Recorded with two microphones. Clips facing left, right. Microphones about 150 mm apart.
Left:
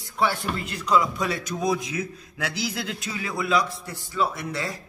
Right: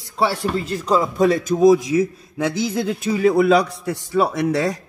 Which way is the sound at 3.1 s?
55° right (ahead or behind).